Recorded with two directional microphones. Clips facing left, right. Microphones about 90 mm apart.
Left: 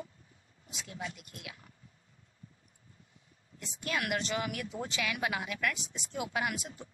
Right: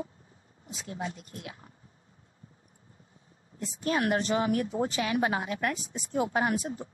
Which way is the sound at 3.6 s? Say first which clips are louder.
Right 7 dB; 35° right (ahead or behind).